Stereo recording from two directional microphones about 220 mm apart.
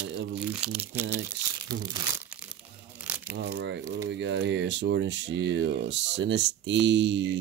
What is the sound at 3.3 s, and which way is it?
Speech, 50° right (ahead or behind).